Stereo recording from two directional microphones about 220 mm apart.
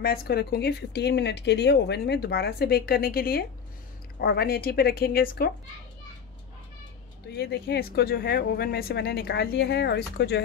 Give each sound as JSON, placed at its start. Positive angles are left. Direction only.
{"t": 0.0, "sound": "speech", "side_deg": 45}
{"t": 7.2, "sound": "speech", "side_deg": 50}